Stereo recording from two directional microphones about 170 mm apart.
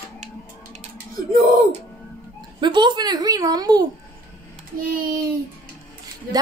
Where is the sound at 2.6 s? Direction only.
25° right (ahead or behind).